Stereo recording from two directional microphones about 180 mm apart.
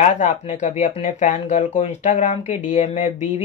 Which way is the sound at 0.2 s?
45° left (ahead or behind).